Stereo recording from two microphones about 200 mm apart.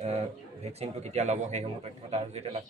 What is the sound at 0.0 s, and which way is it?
A man's voice, 30° right (ahead or behind).